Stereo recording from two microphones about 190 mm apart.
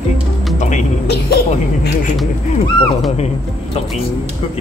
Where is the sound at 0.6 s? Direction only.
40° left (ahead or behind).